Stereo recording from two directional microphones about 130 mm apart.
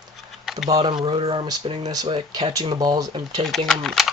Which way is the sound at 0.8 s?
40° right (ahead or behind).